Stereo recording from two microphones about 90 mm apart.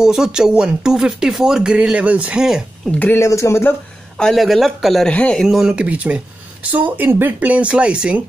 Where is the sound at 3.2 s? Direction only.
30° left (ahead or behind).